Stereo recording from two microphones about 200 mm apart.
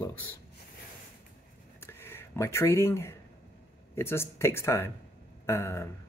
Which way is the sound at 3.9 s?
10° left (ahead or behind).